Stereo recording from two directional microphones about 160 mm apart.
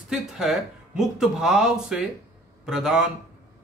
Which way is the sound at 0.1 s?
Centre (ahead or behind).